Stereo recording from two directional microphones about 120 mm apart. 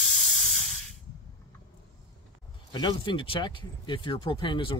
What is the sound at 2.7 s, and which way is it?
Speech, 40° left (ahead or behind).